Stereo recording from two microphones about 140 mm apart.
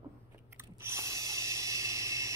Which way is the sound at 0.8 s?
20° right (ahead or behind).